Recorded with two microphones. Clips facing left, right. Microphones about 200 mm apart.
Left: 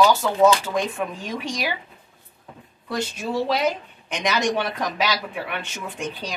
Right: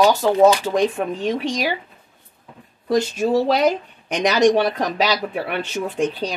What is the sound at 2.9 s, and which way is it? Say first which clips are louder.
Speech: right 8 dB; 40° right (ahead or behind).